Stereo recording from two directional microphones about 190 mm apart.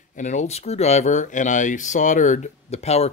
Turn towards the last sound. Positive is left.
turn(degrees=35)  # may be behind; listen again after turning